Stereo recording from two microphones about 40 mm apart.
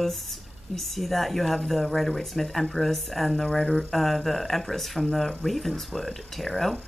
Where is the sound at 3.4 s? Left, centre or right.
Centre.